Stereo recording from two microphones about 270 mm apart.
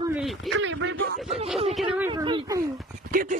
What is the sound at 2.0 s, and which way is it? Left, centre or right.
Speech, centre.